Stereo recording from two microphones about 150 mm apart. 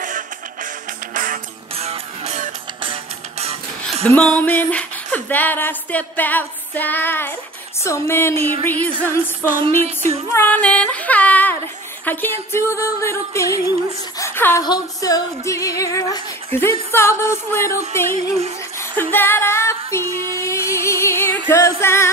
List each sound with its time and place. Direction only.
1.1 s music: 60° right (ahead or behind)
1.8 s music: 45° right (ahead or behind)
3.8 s a sound: 5° left (ahead or behind)
7.8 s music: 15° left (ahead or behind)
8.4 s music: 45° right (ahead or behind)
9.4 s music: 15° left (ahead or behind)
9.8 s female singing: 45° right (ahead or behind)
10.3 s a sound: 10° left (ahead or behind)
12.0 s music: 10° left (ahead or behind)
14.1 s a sound: 15° left (ahead or behind)
14.6 s music: 25° left (ahead or behind)